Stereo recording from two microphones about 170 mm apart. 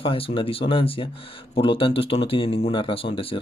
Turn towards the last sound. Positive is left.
turn(degrees=30)  # may be behind; listen again after turning